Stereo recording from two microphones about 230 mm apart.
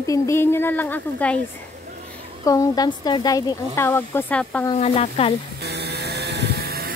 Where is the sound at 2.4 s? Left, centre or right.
Centre.